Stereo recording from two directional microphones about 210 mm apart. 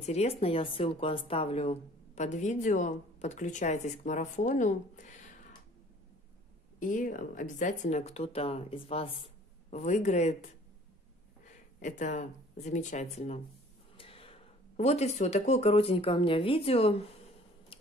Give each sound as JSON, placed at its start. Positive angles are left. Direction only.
{"t": 0.0, "sound": "a woman's voice", "side_deg": 30}
{"t": 6.8, "sound": "a woman's voice", "side_deg": 40}
{"t": 11.4, "sound": "speech", "side_deg": 35}